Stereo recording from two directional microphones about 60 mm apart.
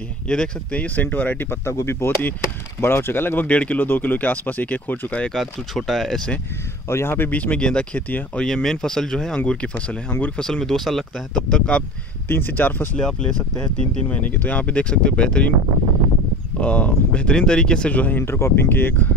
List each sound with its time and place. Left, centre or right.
0.3 s speech: centre
1.6 s speech: left
3.4 s speech: left
5.3 s speech: centre
6.9 s speech: left
7.2 s speech: left
10.4 s speech: centre
11.4 s speech: centre
12.3 s speech: left
12.9 s speech: centre
14.0 s speech: left
16.6 s speech: centre
18.2 s speech: left